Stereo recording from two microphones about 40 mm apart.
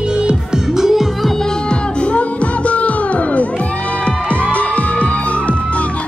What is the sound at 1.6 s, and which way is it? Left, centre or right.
Music, left.